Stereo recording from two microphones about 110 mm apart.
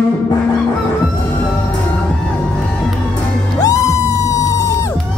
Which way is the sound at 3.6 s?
30° left (ahead or behind).